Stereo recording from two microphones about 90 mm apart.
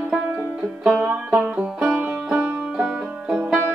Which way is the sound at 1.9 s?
20° right (ahead or behind).